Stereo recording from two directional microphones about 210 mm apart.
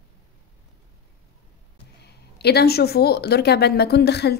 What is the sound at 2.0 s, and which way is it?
Speech, 50° left (ahead or behind).